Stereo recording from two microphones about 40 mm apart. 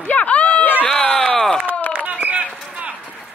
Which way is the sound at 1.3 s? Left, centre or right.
Centre.